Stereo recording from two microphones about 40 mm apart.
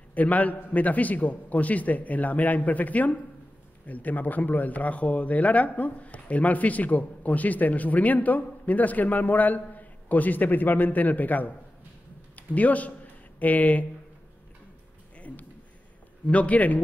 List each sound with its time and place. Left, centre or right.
0.1 s a man's voice: left
15.1 s a sound: left
16.3 s a man's voice: left